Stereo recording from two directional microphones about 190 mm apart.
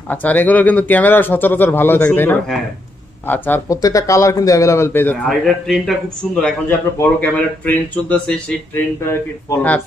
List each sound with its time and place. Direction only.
0.1 s speech: 10° left (ahead or behind)
5.3 s a man's voice: centre (ahead or behind)